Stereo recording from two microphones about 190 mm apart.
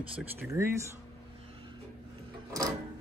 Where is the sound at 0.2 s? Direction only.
15° right (ahead or behind).